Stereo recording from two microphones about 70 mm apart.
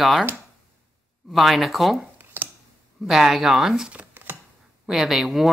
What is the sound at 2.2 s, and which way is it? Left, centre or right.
Finger snapping, right.